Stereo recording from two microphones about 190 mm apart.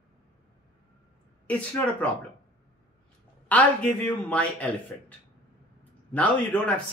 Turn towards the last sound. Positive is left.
turn(degrees=5)  # may be behind; listen again after turning